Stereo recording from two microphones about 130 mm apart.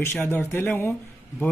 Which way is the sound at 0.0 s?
15° left (ahead or behind).